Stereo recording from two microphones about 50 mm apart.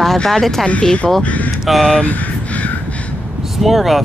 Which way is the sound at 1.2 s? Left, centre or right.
Left.